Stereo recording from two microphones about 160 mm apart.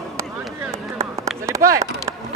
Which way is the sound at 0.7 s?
15° right (ahead or behind).